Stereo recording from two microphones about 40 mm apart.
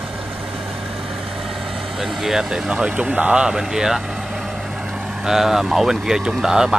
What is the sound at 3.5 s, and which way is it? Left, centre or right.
Speech, centre.